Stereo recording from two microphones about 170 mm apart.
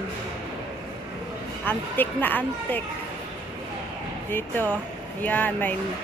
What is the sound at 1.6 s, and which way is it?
Speech, 10° left (ahead or behind).